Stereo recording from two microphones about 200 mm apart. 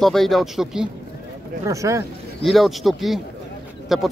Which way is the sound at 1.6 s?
15° right (ahead or behind).